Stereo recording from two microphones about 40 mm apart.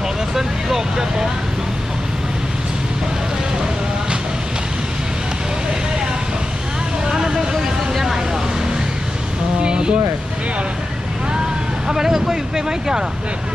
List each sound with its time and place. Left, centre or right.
0.4 s speech: centre
7.1 s vehicle: centre
9.6 s a sound: right
11.9 s speech: centre